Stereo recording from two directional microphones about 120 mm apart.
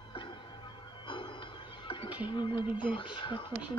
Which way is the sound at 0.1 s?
45° left (ahead or behind).